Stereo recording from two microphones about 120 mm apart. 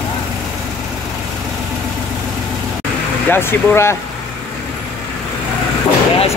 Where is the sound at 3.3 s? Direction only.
20° left (ahead or behind).